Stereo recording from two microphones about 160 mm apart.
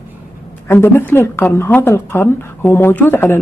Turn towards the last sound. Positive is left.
turn(degrees=15)  # may be behind; listen again after turning